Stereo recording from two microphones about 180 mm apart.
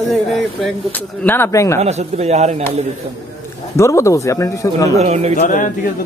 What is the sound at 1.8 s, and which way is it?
Speech, 35° right (ahead or behind).